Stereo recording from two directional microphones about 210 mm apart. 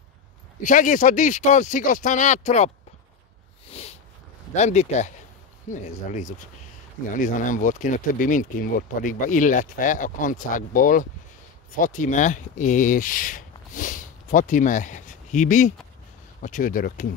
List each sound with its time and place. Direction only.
0.6 s speech: 40° left (ahead or behind)
3.7 s a sound: 30° left (ahead or behind)
4.6 s speech: 35° left (ahead or behind)